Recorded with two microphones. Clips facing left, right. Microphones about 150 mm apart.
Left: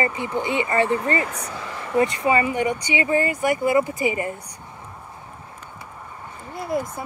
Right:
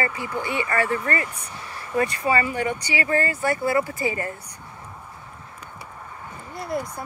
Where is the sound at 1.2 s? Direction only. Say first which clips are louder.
Left 6 dB; 90° left.